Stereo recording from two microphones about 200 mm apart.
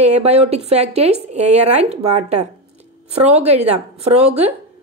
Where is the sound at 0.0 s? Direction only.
35° right (ahead or behind).